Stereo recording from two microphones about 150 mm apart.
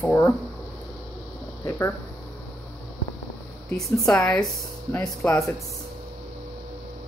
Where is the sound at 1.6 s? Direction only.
15° left (ahead or behind).